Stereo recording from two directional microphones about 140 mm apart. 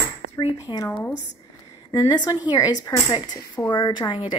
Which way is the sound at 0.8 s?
15° left (ahead or behind).